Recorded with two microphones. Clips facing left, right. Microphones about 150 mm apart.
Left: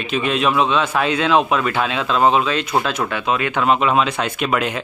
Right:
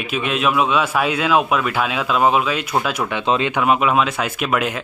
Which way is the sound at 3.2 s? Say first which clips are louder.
Right 3 dB; 30° right (ahead or behind).